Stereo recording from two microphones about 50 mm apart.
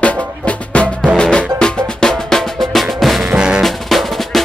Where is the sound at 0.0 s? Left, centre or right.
Left; by 3.3 s centre.